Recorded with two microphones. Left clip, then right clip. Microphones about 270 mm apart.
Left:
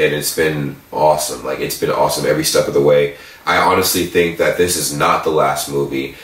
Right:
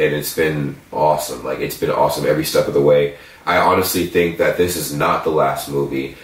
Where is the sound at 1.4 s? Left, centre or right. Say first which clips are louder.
Left 1 dB; centre.